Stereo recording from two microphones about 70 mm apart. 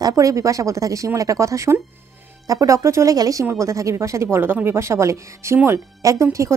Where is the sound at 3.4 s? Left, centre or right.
Right.